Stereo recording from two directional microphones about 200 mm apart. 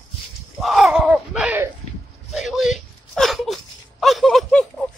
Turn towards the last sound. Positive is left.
turn(degrees=0)  # may be behind; listen again after turning